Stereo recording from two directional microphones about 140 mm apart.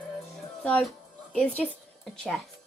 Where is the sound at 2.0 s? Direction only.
Centre (ahead or behind).